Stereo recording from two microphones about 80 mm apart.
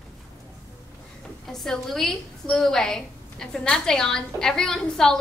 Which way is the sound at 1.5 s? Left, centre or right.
Centre.